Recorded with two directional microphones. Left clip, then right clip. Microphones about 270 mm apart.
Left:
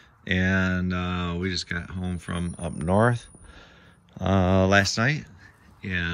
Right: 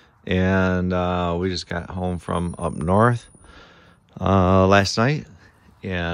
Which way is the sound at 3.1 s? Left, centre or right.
Right.